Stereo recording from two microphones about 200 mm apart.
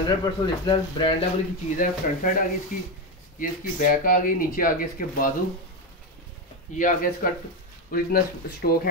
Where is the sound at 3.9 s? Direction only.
45° left (ahead or behind).